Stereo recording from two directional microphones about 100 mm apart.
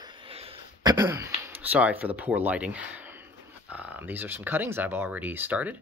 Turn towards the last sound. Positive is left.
turn(degrees=-15)  # may be behind; listen again after turning